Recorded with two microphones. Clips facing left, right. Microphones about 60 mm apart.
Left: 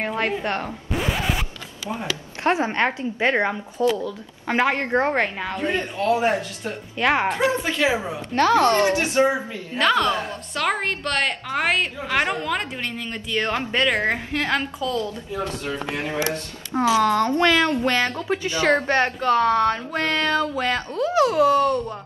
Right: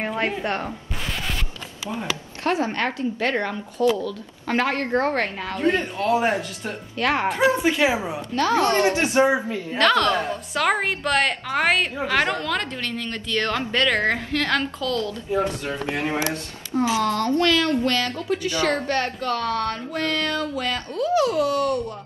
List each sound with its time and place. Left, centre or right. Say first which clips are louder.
0.0 s a woman's voice: left 1 dB; centre
0.9 s zipper: left 7 dB; centre
2.4 s speech: left 2 dB; left
5.9 s a woman's voice: left 1 dB; centre
7.0 s speech: left 2 dB; centre
7.6 s a woman's voice: right 2 dB; centre
8.4 s a woman's voice: left 3 dB; left
8.8 s speech: even; right
9.8 s a woman's voice: right 1 dB; centre
10.5 s a woman's voice: right 1 dB; centre
12.2 s a woman's voice: left 2 dB; centre
16.2 s speech: left 1 dB; left